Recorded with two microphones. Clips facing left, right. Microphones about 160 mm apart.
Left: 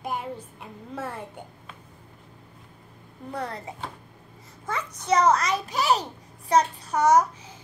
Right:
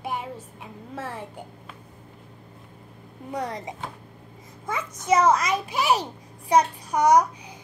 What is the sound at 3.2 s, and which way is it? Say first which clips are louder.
Speech: right 2 dB; 10° right (ahead or behind).